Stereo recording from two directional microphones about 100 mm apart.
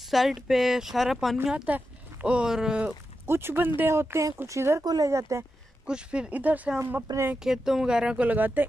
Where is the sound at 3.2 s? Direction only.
25° right (ahead or behind).